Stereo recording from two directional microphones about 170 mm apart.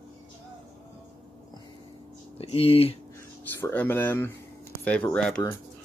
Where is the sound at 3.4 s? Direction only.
10° left (ahead or behind).